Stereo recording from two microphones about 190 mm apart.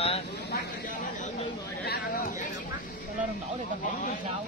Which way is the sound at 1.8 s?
50° left (ahead or behind).